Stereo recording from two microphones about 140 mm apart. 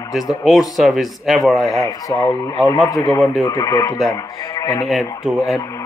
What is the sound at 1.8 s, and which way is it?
Speech, 25° left (ahead or behind).